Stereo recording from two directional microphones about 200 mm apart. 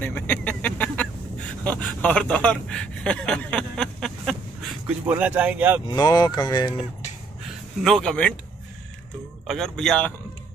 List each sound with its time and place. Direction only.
0.0 s speech: 10° left (ahead or behind)
5.0 s speech: 10° right (ahead or behind)
5.9 s speech: 20° left (ahead or behind)
7.8 s a man's voice: centre (ahead or behind)
9.5 s a man's voice: centre (ahead or behind)